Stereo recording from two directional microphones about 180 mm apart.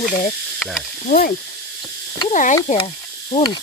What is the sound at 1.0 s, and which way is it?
Speech, 50° left (ahead or behind).